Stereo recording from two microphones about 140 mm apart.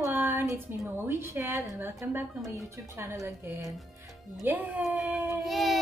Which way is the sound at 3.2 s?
20° right (ahead or behind).